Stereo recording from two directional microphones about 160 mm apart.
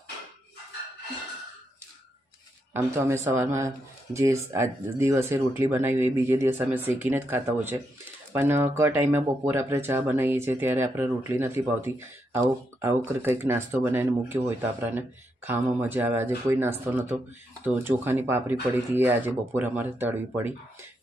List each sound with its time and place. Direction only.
2.7 s speech: 15° right (ahead or behind)